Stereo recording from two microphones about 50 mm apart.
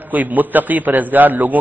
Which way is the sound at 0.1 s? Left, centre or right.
Right.